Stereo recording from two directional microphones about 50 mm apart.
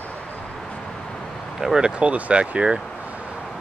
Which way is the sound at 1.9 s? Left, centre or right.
Right.